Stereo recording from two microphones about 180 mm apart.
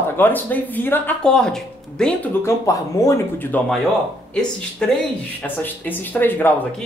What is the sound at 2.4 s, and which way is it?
Speech, 20° left (ahead or behind).